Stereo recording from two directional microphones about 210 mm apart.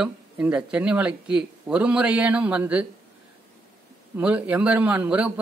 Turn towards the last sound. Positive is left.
turn(degrees=-5)  # may be behind; listen again after turning